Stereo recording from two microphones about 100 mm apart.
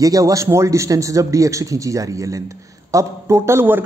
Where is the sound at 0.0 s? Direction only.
35° right (ahead or behind).